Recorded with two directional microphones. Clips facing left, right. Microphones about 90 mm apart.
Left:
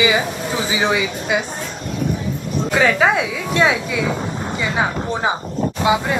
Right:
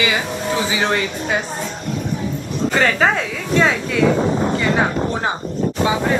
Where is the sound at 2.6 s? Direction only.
5° left (ahead or behind).